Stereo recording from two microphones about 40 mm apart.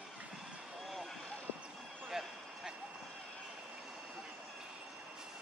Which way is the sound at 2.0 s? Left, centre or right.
Centre.